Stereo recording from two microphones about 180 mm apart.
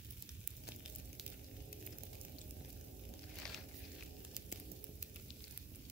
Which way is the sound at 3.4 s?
5° left (ahead or behind).